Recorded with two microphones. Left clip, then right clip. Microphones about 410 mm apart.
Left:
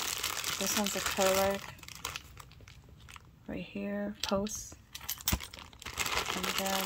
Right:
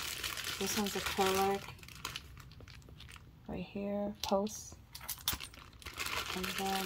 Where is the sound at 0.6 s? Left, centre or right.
Centre.